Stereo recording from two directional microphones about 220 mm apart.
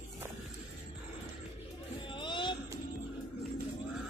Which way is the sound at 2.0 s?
20° left (ahead or behind).